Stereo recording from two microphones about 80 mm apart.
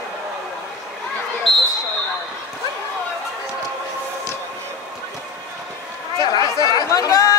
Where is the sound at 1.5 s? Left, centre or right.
Centre.